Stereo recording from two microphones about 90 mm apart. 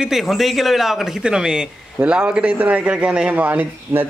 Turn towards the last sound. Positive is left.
turn(degrees=-15)  # may be behind; listen again after turning